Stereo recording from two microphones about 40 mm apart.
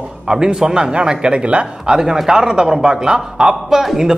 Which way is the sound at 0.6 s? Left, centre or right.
Centre.